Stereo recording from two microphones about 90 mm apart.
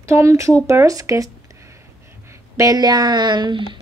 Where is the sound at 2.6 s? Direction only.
45° right (ahead or behind); by 3.8 s 60° right (ahead or behind).